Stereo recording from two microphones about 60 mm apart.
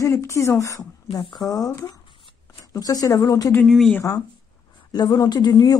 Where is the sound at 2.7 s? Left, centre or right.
Left.